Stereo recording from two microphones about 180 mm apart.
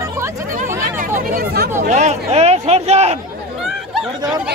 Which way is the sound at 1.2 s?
60° right (ahead or behind).